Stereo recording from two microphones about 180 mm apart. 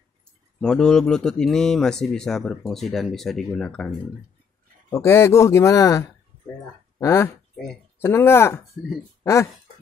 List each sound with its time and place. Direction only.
0.6 s speech: 5° left (ahead or behind)
4.8 s speech: 15° left (ahead or behind)